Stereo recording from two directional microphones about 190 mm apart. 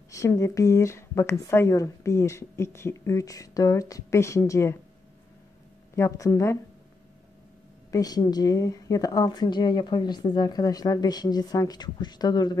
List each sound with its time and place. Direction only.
0.1 s speech: 15° left (ahead or behind)
5.9 s speech: 15° left (ahead or behind)
7.9 s a woman's voice: 20° left (ahead or behind)